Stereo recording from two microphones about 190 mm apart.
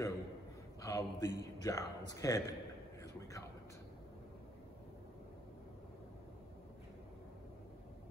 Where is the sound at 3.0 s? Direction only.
15° left (ahead or behind).